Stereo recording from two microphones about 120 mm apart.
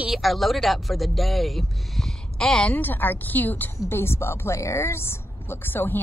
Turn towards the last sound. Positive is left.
turn(degrees=15)  # may be behind; listen again after turning